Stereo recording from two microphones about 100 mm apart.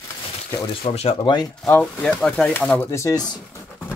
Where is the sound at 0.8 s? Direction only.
75° left (ahead or behind).